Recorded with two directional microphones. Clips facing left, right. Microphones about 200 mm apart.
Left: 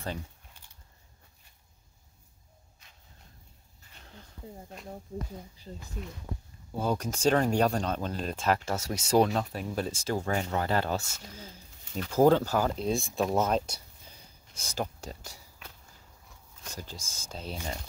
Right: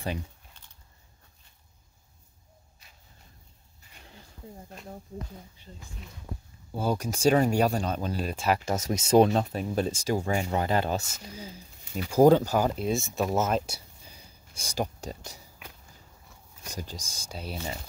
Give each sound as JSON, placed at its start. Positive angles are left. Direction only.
{"t": 3.9, "sound": "a sound", "side_deg": -10}
{"t": 5.6, "sound": "speech", "side_deg": 35}
{"t": 6.7, "sound": "speech", "side_deg": -5}
{"t": 12.8, "sound": "speech", "side_deg": 0}